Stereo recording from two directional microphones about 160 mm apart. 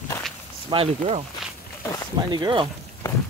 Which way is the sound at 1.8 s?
20° left (ahead or behind).